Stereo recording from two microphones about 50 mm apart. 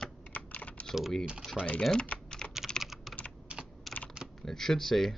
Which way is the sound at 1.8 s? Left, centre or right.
Centre.